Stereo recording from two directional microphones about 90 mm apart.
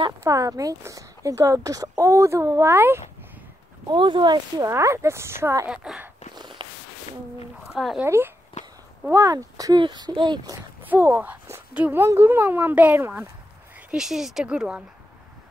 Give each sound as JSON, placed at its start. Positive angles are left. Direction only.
{"t": 0.2, "sound": "speech", "side_deg": -40}
{"t": 2.7, "sound": "speech", "side_deg": -25}
{"t": 3.9, "sound": "speech", "side_deg": -60}
{"t": 4.6, "sound": "speech", "side_deg": -35}
{"t": 5.7, "sound": "speech", "side_deg": -10}
{"t": 6.3, "sound": "a sound", "side_deg": -55}
{"t": 7.7, "sound": "speech", "side_deg": -5}
{"t": 8.0, "sound": "speech", "side_deg": -25}
{"t": 9.1, "sound": "speech", "side_deg": -40}
{"t": 9.8, "sound": "speech", "side_deg": -55}
{"t": 10.9, "sound": "speech", "side_deg": -20}
{"t": 12.0, "sound": "speech", "side_deg": -25}
{"t": 13.7, "sound": "a sound", "side_deg": -15}
{"t": 14.0, "sound": "speech", "side_deg": -5}